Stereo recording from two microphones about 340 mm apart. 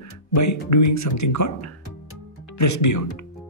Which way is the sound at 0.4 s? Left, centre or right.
Left.